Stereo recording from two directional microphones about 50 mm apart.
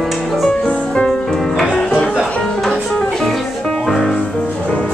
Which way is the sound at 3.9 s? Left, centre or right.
Centre.